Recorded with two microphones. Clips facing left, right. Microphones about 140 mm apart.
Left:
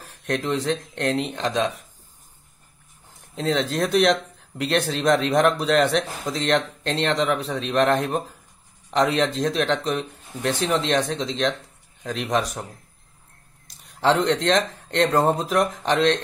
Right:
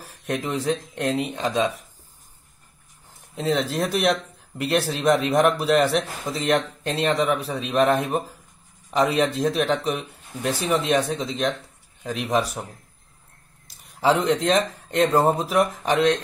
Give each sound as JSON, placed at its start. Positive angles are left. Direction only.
{"t": 0.0, "sound": "speech", "side_deg": -5}
{"t": 3.3, "sound": "speech", "side_deg": 0}
{"t": 13.7, "sound": "speech", "side_deg": -5}